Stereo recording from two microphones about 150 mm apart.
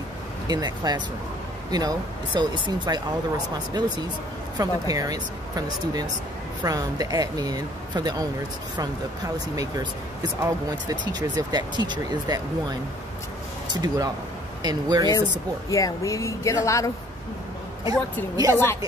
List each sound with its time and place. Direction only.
0.5 s speech: 25° right (ahead or behind)
10.4 s speech: 25° right (ahead or behind)
15.7 s speech: 20° left (ahead or behind)
18.3 s speech: 25° right (ahead or behind)